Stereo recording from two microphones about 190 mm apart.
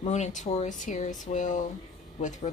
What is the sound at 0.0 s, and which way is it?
Speech, 40° left (ahead or behind).